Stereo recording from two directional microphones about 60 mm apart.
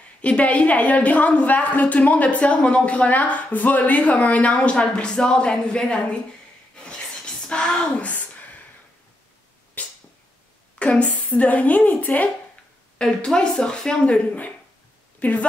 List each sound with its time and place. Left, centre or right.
0.2 s a woman's voice: left
6.8 s a sound: centre
8.1 s a sound: left
9.8 s cat: left
10.8 s a woman's voice: left
12.9 s speech: centre